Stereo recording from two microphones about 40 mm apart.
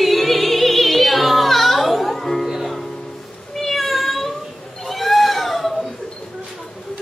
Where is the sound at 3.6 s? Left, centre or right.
Centre.